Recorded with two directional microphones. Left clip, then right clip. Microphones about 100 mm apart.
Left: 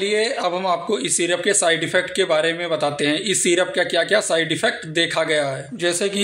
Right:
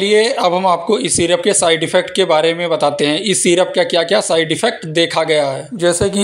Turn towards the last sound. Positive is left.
turn(degrees=-35)  # may be behind; listen again after turning